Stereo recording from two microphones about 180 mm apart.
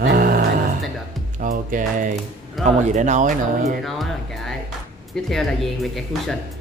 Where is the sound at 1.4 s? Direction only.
50° right (ahead or behind).